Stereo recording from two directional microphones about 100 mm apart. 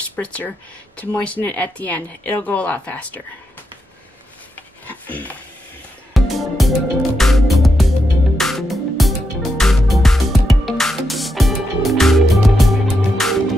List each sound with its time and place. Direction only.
0.1 s speech: 20° left (ahead or behind)
4.8 s a sound: 15° left (ahead or behind)
6.1 s music: centre (ahead or behind)